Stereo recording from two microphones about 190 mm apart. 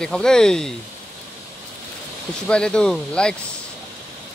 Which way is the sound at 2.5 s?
5° left (ahead or behind).